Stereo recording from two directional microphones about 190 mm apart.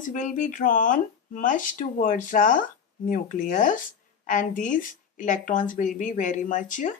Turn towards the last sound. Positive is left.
turn(degrees=40)  # may be behind; listen again after turning